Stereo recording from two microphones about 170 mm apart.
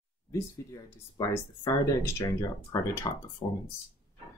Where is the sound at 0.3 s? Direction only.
20° left (ahead or behind).